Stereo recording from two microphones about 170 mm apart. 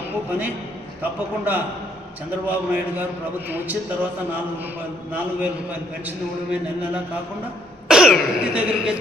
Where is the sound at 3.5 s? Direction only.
10° right (ahead or behind).